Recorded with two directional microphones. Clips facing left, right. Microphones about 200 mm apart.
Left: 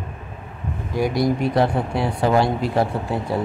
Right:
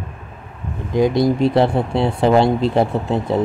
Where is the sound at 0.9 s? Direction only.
20° right (ahead or behind).